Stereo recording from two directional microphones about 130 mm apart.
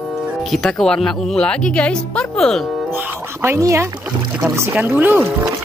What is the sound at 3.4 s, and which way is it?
Speech, 20° right (ahead or behind).